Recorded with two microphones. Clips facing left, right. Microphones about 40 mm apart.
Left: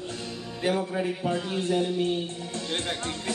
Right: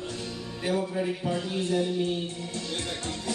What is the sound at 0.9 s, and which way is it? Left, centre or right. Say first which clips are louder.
Speech: left 1 dB; left.